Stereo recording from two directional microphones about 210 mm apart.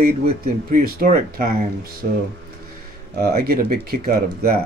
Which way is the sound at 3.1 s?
45° right (ahead or behind).